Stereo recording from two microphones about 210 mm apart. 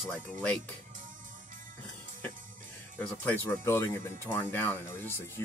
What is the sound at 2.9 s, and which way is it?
Speech, 10° left (ahead or behind).